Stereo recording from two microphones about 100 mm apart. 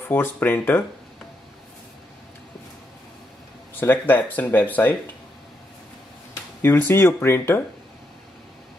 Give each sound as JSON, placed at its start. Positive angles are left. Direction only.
{"t": 0.1, "sound": "speech", "side_deg": 20}
{"t": 3.8, "sound": "speech", "side_deg": 20}
{"t": 6.6, "sound": "speech", "side_deg": 25}